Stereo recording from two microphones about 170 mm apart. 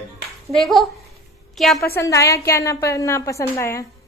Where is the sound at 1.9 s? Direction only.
15° left (ahead or behind).